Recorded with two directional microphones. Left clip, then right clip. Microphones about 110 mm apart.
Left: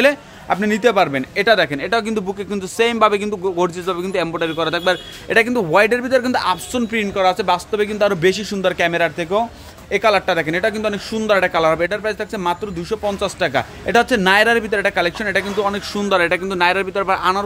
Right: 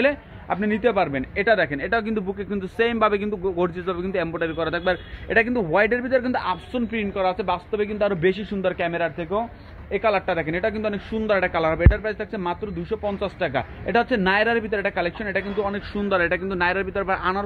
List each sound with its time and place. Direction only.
0.0 s a man's voice: 35° left (ahead or behind); by 9.5 s 50° left (ahead or behind)
9.9 s a man's voice: 35° left (ahead or behind)
16.0 s speech: 30° left (ahead or behind)